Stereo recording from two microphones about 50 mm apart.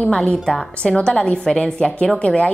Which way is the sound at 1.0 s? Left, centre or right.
Centre.